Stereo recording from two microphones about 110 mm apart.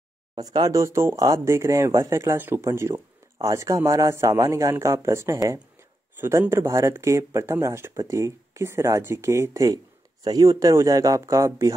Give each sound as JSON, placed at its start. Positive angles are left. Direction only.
{"t": 0.4, "sound": "a man's voice", "side_deg": -35}